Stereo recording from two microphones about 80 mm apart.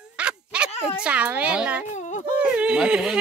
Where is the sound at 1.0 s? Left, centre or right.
Centre.